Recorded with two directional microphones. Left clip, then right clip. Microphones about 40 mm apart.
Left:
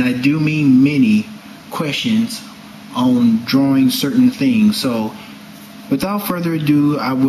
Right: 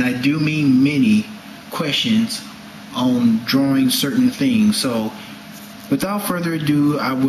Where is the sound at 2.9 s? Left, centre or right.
Left.